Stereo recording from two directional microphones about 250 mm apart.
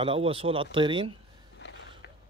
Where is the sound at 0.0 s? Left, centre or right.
Right.